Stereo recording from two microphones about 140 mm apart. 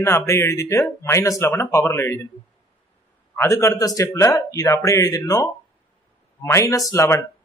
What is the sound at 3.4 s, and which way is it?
Speech, 20° left (ahead or behind).